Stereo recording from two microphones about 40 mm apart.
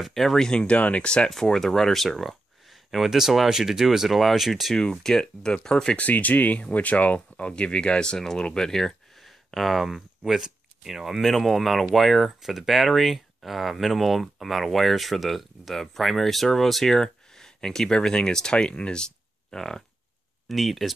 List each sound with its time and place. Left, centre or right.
0.1 s speech: centre
0.5 s speech: left
1.0 s speech: left
1.3 s speech: centre
4.7 s speech: centre
5.9 s speech: left
7.2 s speech: left
20.4 s speech: centre